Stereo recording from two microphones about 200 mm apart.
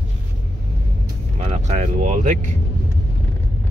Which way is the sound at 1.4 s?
35° right (ahead or behind).